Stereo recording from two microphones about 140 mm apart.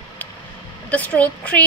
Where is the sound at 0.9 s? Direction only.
10° left (ahead or behind).